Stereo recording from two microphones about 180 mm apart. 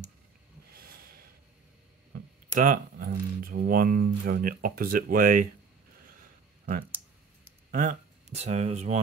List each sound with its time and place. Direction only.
0.7 s a sound: 55° right (ahead or behind)
2.5 s speech: 50° right (ahead or behind)
7.7 s speech: 45° right (ahead or behind)